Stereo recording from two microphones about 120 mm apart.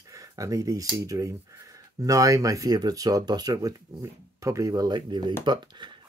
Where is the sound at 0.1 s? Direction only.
30° right (ahead or behind).